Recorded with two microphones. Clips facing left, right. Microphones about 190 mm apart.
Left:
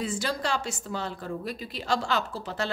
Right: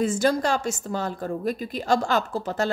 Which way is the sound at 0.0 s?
45° right (ahead or behind).